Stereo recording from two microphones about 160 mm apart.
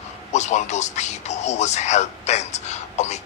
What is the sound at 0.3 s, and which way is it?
A man's voice, 45° left (ahead or behind).